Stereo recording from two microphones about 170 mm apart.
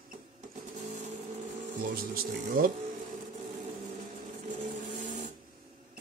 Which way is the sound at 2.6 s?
55° right (ahead or behind).